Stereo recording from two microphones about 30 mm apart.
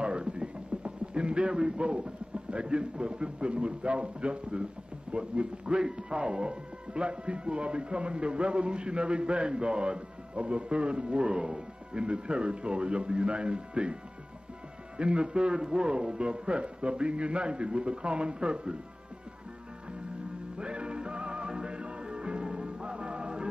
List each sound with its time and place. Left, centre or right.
0.0 s a sound: right
1.5 s a man's voice: right
1.9 s speech: right
5.8 s speech: right
15.0 s speech: right
20.5 s music: right